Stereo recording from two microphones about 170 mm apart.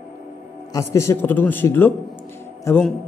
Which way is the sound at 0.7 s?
15° left (ahead or behind).